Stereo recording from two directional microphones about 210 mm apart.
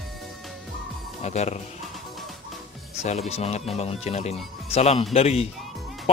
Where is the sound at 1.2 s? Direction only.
30° left (ahead or behind).